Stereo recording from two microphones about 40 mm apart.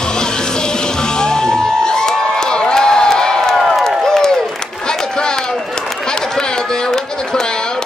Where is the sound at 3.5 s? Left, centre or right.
Centre.